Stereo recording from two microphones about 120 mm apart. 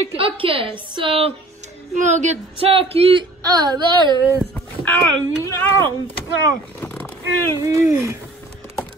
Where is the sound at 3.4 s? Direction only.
35° right (ahead or behind).